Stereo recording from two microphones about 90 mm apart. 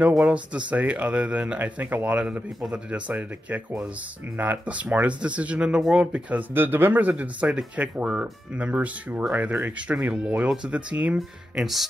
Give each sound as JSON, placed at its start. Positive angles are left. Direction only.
{"t": 0.2, "sound": "speech", "side_deg": -15}
{"t": 11.1, "sound": "speech", "side_deg": -5}